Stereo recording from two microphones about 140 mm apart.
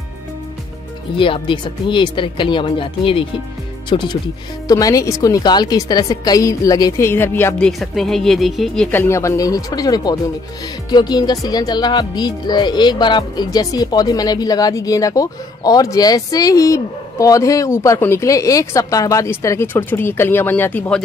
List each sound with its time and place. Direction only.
1.1 s speech: 40° left (ahead or behind); by 8.8 s centre (ahead or behind)
8.9 s speech: 15° left (ahead or behind)